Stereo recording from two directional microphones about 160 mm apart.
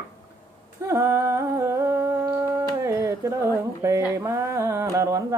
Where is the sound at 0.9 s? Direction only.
15° right (ahead or behind).